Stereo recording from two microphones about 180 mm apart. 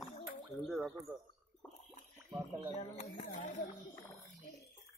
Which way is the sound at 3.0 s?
45° left (ahead or behind).